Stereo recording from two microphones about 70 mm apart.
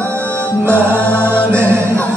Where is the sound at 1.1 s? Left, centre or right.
Right.